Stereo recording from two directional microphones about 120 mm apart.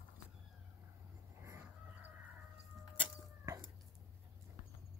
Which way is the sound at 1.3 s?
20° right (ahead or behind).